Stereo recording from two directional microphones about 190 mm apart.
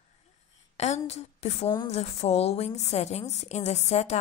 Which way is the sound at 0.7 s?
35° left (ahead or behind).